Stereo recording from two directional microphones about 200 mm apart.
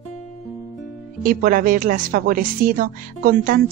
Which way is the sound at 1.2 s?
45° right (ahead or behind).